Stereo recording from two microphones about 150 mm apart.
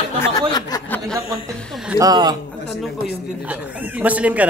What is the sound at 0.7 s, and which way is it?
Chuckle, 25° left (ahead or behind).